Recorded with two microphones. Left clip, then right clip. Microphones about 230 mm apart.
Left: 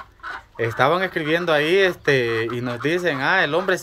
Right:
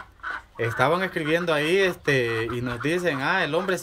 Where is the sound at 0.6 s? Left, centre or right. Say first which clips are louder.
Left 4 dB; centre.